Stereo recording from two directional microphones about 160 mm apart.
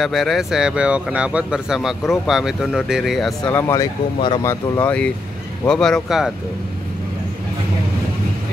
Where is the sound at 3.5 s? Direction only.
15° left (ahead or behind); by 6.3 s centre (ahead or behind).